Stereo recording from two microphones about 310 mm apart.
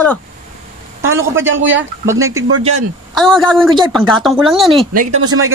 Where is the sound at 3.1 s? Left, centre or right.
Centre.